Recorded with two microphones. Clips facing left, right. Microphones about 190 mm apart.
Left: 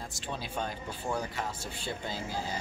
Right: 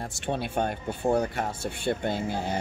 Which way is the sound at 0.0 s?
65° right (ahead or behind).